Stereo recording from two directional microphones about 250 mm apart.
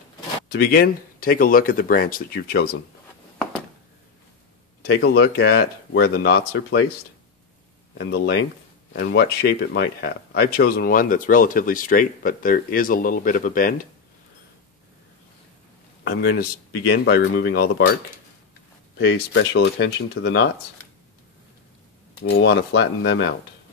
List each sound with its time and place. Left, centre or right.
0.5 s speech: left
4.8 s speech: left
8.0 s speech: left
16.0 s speech: left
18.9 s speech: left
22.2 s speech: left